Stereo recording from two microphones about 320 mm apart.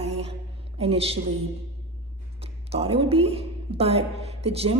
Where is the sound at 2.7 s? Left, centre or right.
Centre.